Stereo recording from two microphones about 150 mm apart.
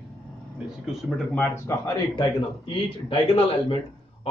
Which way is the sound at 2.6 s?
35° left (ahead or behind).